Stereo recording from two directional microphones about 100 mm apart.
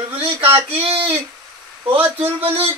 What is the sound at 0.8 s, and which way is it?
Speech, 70° right (ahead or behind).